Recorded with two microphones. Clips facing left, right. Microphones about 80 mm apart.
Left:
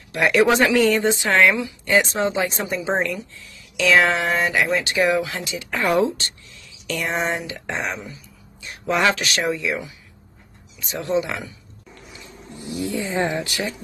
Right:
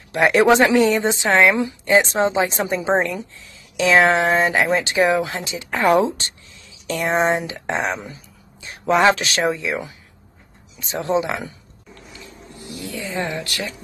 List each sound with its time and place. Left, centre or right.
0.1 s speech: right
8.6 s speech: right
10.8 s speech: right
12.2 s speech: left